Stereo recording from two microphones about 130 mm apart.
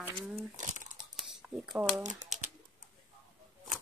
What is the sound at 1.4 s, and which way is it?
Shuffling cards, 15° right (ahead or behind).